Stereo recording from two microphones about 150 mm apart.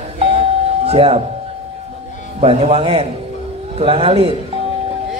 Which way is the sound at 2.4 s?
40° right (ahead or behind).